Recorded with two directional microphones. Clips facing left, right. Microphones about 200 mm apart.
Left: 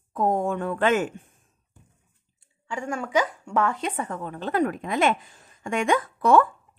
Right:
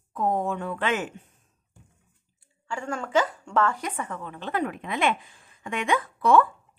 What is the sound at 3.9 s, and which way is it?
A woman's voice, 35° left (ahead or behind).